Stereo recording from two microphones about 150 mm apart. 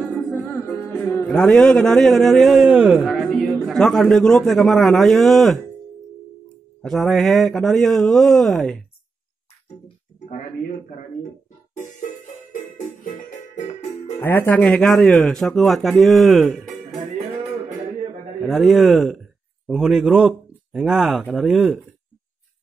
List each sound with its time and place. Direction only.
0.3 s music: 10° left (ahead or behind)
1.2 s a man's voice: 5° left (ahead or behind)
6.8 s a man's voice: centre (ahead or behind)
12.5 s music: 55° left (ahead or behind)
14.1 s a man's voice: 15° left (ahead or behind)
18.4 s a man's voice: centre (ahead or behind)